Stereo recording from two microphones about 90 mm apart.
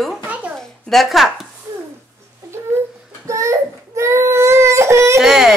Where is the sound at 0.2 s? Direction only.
15° right (ahead or behind).